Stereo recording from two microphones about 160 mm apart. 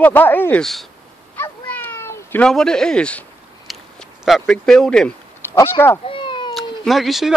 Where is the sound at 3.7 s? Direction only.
Centre (ahead or behind).